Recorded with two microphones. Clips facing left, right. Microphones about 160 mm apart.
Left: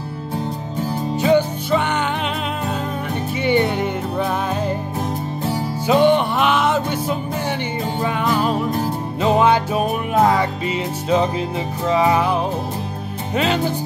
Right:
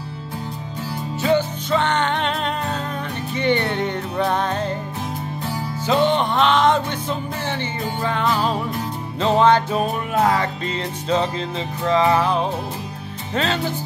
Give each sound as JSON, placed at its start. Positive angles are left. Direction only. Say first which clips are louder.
{"t": 1.2, "sound": "music", "louder": "left 3 dB", "side_deg": 15}
{"t": 3.3, "sound": "music", "louder": "left 2 dB", "side_deg": 10}
{"t": 5.9, "sound": "music", "louder": "left 4 dB", "side_deg": 15}
{"t": 11.9, "sound": "music", "louder": "even", "side_deg": 10}